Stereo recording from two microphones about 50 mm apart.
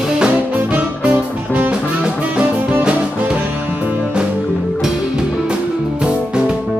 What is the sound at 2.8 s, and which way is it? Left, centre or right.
Music, right.